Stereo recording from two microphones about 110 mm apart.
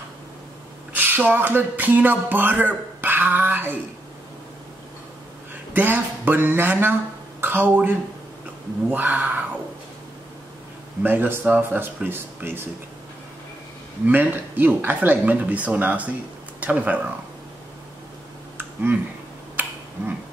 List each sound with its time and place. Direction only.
0.9 s a sound: 15° right (ahead or behind)
5.7 s speech: 15° right (ahead or behind)
8.9 s speech: 15° right (ahead or behind)
11.0 s speech: 15° right (ahead or behind)
14.0 s speech: 15° right (ahead or behind)
18.6 s a sound: 20° right (ahead or behind)